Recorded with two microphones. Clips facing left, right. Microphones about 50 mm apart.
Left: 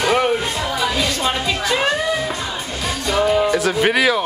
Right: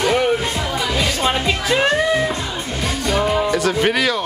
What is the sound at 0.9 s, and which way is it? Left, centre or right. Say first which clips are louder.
Music: right 1 dB; right.